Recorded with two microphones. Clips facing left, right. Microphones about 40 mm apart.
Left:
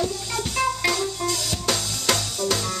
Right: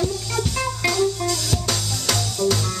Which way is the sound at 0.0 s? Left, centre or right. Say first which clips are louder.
Right 2 dB; centre.